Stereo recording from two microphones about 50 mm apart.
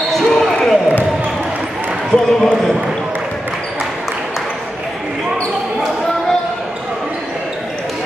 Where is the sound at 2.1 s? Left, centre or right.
Centre.